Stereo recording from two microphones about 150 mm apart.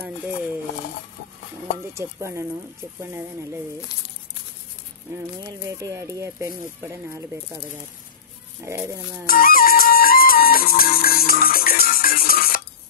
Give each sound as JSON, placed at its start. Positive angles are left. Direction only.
{"t": 2.0, "sound": "speech", "side_deg": -20}
{"t": 3.9, "sound": "speech", "side_deg": 25}
{"t": 5.4, "sound": "speech", "side_deg": -20}
{"t": 8.6, "sound": "speech", "side_deg": -20}
{"t": 9.2, "sound": "music", "side_deg": 75}